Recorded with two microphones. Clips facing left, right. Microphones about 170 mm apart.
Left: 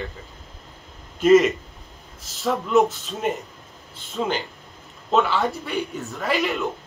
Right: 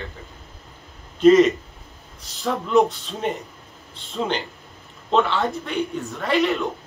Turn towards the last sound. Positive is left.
turn(degrees=0)  # may be behind; listen again after turning